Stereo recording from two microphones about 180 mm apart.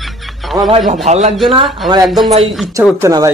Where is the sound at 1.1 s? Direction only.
40° right (ahead or behind).